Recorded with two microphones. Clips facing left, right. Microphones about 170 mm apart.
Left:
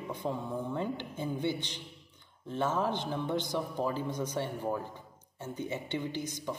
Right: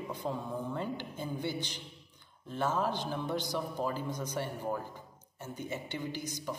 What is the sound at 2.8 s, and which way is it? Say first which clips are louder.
Speech: left 1 dB; 20° left (ahead or behind).